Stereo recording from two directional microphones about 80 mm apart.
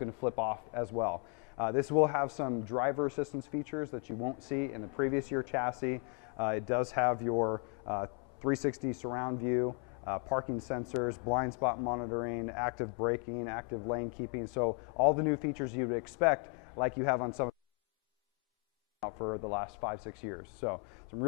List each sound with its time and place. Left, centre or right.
0.0 s a man's voice: centre
3.1 s speech: centre
3.9 s speech: right
4.5 s speech: centre
8.4 s speech: centre
9.1 s speech: right
19.0 s speech: right
20.0 s speech: centre
20.2 s speech: right